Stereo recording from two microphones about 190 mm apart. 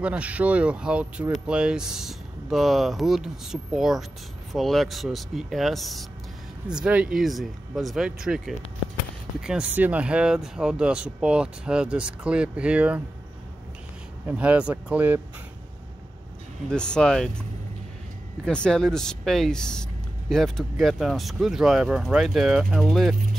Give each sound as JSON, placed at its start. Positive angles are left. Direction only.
{"t": 0.0, "sound": "speech", "side_deg": -5}
{"t": 14.2, "sound": "speech", "side_deg": -5}
{"t": 16.6, "sound": "speech", "side_deg": 5}
{"t": 18.4, "sound": "speech", "side_deg": 5}